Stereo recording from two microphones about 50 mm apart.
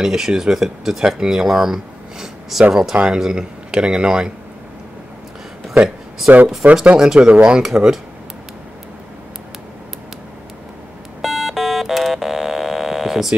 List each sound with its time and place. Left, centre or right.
0.0 s speech: centre
6.3 s speech: right
7.6 s speech: centre
11.1 s a sound: centre